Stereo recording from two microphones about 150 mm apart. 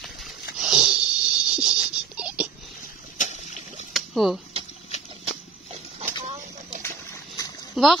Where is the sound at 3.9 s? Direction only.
Centre (ahead or behind).